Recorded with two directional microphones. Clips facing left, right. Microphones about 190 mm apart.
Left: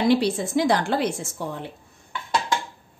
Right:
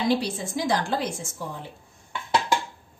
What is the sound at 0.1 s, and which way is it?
A woman's voice, 65° left (ahead or behind).